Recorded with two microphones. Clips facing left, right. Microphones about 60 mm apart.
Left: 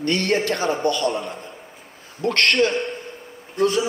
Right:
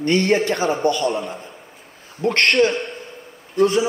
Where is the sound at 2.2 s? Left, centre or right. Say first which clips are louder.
Right 2 dB; right.